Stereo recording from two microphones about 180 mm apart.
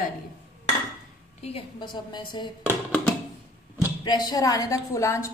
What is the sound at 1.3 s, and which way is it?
A woman's voice, 30° left (ahead or behind).